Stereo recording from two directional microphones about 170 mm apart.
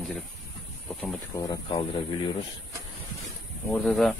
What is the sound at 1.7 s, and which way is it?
Speech, 30° left (ahead or behind).